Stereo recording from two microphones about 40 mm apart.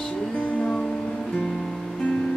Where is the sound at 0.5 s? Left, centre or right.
Left.